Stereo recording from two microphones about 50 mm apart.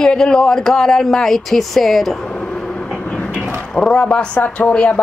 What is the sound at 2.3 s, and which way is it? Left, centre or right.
Vehicle, centre.